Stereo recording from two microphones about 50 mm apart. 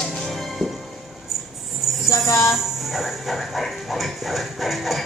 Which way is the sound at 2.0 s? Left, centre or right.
Left.